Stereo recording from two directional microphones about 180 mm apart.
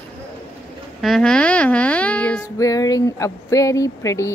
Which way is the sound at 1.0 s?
5° left (ahead or behind).